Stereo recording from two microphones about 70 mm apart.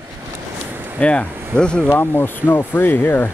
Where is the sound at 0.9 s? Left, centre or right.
Centre.